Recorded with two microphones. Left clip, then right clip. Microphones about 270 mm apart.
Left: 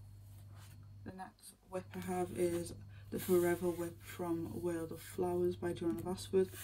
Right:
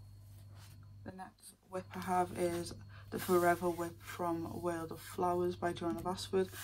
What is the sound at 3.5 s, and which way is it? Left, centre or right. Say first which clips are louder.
Speech: right 4 dB; centre.